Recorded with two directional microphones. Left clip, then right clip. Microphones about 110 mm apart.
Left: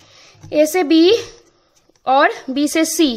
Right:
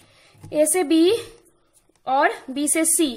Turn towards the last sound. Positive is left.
turn(degrees=45)  # may be behind; listen again after turning